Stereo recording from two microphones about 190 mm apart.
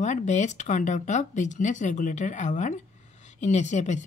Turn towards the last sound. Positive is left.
turn(degrees=40)  # may be behind; listen again after turning